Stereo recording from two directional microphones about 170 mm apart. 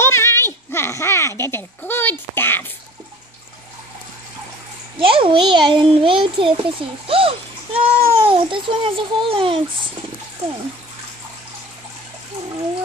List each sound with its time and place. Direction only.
0.0 s a child's voice: 15° left (ahead or behind)
5.0 s a child's voice: 30° right (ahead or behind)